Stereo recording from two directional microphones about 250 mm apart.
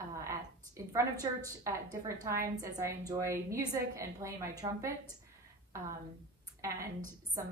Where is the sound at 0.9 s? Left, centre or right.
Centre.